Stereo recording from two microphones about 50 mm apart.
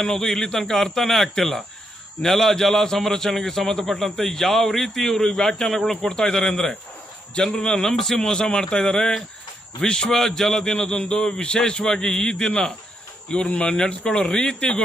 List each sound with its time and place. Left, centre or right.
0.0 s a man's voice: centre